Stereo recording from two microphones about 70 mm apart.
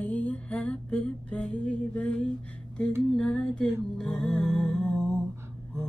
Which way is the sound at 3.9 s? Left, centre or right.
Centre.